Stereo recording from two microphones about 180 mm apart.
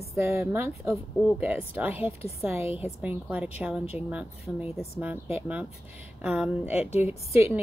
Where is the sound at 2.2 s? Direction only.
35° left (ahead or behind).